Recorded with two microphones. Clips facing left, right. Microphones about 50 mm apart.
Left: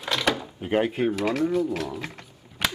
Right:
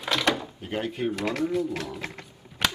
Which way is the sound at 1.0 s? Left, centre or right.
Centre.